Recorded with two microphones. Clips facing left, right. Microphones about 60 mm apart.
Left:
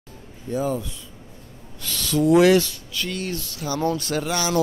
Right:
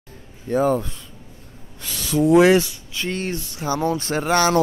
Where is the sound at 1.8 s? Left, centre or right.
Centre.